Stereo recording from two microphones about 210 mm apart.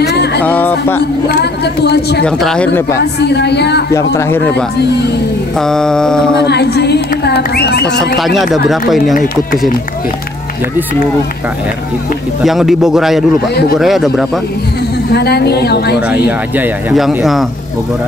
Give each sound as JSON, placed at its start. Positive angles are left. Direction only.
{"t": 0.0, "sound": "a sound", "side_deg": 50}
{"t": 0.4, "sound": "a sound", "side_deg": 10}
{"t": 1.3, "sound": "speech", "side_deg": 50}
{"t": 2.2, "sound": "speech", "side_deg": 0}
{"t": 3.2, "sound": "speech", "side_deg": 55}
{"t": 3.9, "sound": "speech", "side_deg": 15}
{"t": 6.4, "sound": "speech", "side_deg": 50}
{"t": 8.2, "sound": "speech", "side_deg": 0}
{"t": 12.4, "sound": "speech", "side_deg": 0}
{"t": 15.1, "sound": "speech", "side_deg": 50}
{"t": 16.1, "sound": "speech", "side_deg": -5}